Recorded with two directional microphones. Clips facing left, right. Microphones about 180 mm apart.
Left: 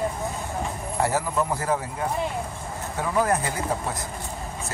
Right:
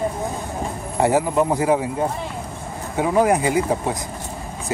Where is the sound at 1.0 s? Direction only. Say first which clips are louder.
Right 7 dB; 20° right (ahead or behind).